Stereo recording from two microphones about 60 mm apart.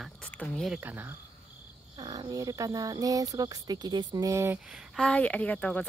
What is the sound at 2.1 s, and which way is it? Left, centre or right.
Speech, right.